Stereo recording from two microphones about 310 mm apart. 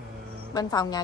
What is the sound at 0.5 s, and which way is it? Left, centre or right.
Speech, centre.